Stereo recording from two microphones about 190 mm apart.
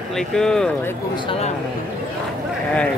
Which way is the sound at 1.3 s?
35° left (ahead or behind).